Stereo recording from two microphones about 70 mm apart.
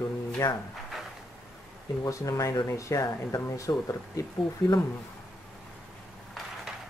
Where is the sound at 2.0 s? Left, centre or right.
Left.